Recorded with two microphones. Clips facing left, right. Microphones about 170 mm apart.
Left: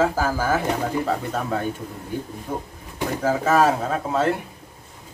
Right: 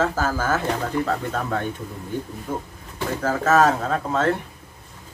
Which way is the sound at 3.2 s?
10° left (ahead or behind).